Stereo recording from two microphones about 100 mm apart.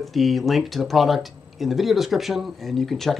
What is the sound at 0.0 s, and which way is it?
Speech, centre (ahead or behind).